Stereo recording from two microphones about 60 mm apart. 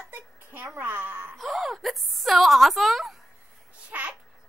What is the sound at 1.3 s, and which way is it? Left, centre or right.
A woman's voice, centre.